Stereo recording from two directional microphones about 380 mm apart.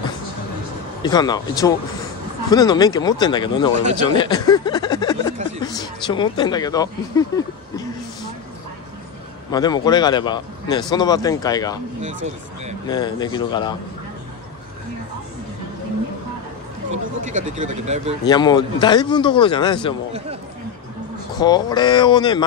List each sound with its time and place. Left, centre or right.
1.0 s speech: centre
9.5 s speech: centre
12.8 s speech: centre
17.2 s speech: centre
18.2 s speech: centre
21.4 s speech: centre